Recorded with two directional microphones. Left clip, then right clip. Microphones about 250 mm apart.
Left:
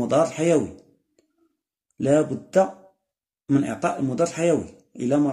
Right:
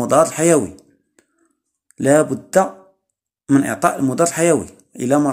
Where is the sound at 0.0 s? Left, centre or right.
Centre.